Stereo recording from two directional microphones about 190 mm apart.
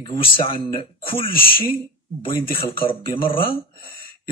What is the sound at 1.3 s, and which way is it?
Speech, 50° left (ahead or behind).